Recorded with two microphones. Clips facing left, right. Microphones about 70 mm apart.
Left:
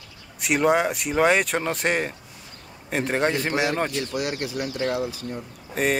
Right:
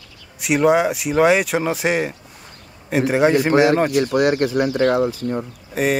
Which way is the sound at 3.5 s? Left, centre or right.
Right.